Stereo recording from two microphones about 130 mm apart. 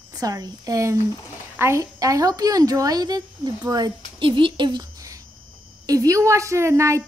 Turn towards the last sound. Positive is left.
turn(degrees=-20)  # may be behind; listen again after turning